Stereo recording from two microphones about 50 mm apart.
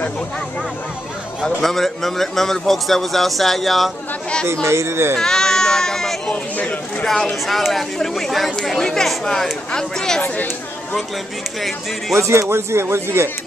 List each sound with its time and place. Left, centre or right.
1.4 s a man's voice: centre
4.6 s speech: right
5.1 s baby cry: centre
7.4 s a man's voice: centre
10.2 s speech: left
12.2 s speech: right